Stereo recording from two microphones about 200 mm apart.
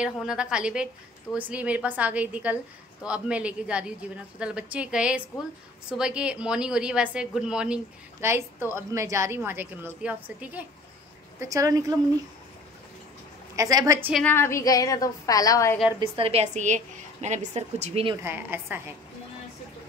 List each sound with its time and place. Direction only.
0.0 s a woman's voice: 5° right (ahead or behind)
13.6 s a woman's voice: 15° right (ahead or behind)
14.1 s a woman's voice: 10° left (ahead or behind)
16.0 s a woman's voice: 30° right (ahead or behind)
18.2 s a woman's voice: 10° right (ahead or behind)